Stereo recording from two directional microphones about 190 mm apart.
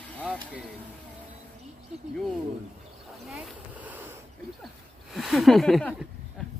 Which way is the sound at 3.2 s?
Centre (ahead or behind).